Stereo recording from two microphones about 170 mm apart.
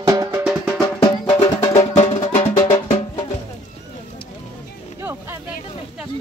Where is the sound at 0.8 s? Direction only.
25° left (ahead or behind).